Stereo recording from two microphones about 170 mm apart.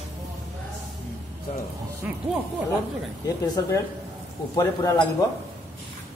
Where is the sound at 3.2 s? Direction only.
20° left (ahead or behind).